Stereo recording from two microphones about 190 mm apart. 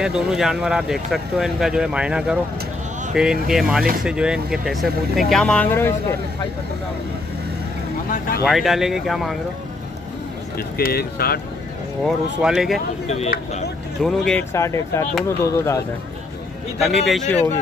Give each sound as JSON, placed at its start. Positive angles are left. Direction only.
{"t": 0.0, "sound": "speech", "side_deg": -5}
{"t": 8.1, "sound": "speech", "side_deg": 50}
{"t": 8.5, "sound": "speech", "side_deg": 0}
{"t": 10.8, "sound": "speech", "side_deg": 55}
{"t": 12.0, "sound": "speech", "side_deg": -5}
{"t": 14.0, "sound": "speech", "side_deg": 5}
{"t": 14.5, "sound": "speech", "side_deg": 15}
{"t": 16.8, "sound": "speech", "side_deg": 0}